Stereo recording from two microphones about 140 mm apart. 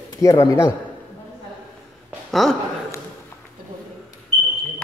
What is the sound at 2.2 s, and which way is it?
Speech, centre (ahead or behind).